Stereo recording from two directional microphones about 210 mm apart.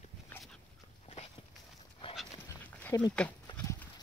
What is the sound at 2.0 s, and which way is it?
Dog, 25° left (ahead or behind).